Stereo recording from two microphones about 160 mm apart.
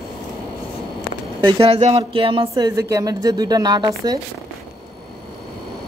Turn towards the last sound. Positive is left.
turn(degrees=-25)  # may be behind; listen again after turning